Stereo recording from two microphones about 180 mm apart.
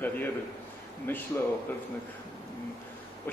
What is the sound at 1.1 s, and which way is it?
Speech, 10° left (ahead or behind).